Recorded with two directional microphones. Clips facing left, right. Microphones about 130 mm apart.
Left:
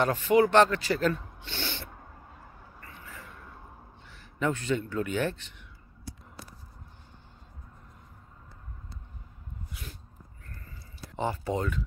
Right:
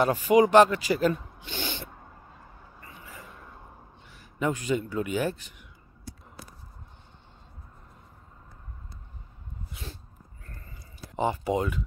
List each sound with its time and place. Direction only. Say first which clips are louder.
0.0 s speech: right 2 dB; 10° right (ahead or behind)
2.8 s vehicle: right 1 dB; 15° right (ahead or behind)
4.1 s speech: right 1 dB; 15° right (ahead or behind)
9.7 s sneeze: right 4 dB; 25° right (ahead or behind)
11.1 s speech: right 4 dB; 15° right (ahead or behind)